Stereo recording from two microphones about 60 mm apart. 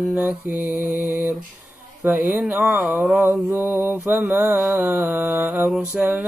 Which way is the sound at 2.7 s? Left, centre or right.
Right.